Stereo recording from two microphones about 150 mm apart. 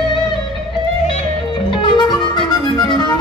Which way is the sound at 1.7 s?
30° left (ahead or behind).